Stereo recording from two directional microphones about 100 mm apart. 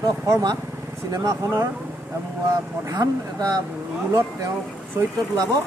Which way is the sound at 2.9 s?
40° right (ahead or behind).